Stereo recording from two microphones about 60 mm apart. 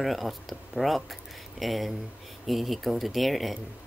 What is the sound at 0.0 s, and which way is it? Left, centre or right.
Speech, centre.